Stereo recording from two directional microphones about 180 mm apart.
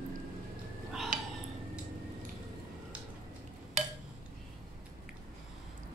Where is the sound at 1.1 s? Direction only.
50° right (ahead or behind).